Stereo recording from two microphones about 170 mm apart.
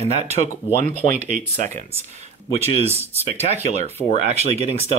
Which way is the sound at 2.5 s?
35° right (ahead or behind).